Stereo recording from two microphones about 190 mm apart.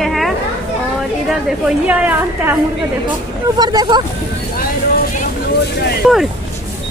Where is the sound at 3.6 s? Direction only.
20° right (ahead or behind).